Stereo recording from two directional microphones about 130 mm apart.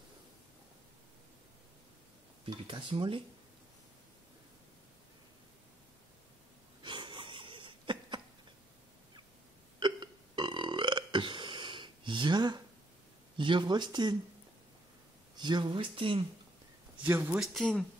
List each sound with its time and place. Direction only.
2.4 s speech: 40° right (ahead or behind)
6.8 s wheeze: 40° right (ahead or behind)
9.8 s burping: 35° right (ahead or behind)
13.4 s speech: 40° right (ahead or behind)
15.3 s speech: 35° right (ahead or behind)
17.0 s speech: 15° right (ahead or behind)
17.4 s speech: 5° left (ahead or behind)